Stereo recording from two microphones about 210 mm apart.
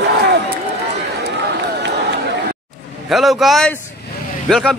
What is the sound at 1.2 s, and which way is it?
Run, 55° right (ahead or behind).